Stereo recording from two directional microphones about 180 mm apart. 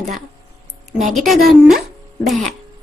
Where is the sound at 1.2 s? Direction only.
5° right (ahead or behind).